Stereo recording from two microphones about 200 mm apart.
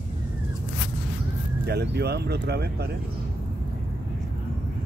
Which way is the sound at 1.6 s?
55° right (ahead or behind).